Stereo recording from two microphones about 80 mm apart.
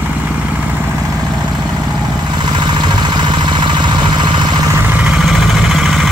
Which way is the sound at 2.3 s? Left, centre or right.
Right.